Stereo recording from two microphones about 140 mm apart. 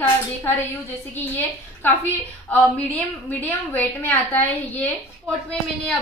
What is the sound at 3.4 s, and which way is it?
A woman's voice, 15° left (ahead or behind).